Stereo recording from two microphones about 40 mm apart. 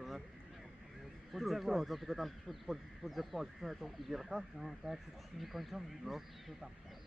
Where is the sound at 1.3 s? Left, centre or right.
Centre.